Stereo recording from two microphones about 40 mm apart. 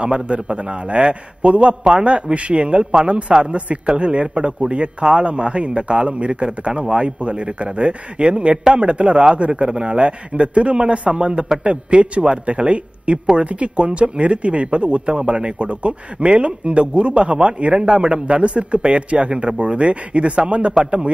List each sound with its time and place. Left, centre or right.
0.0 s a man's voice: right
3.5 s a man's voice: right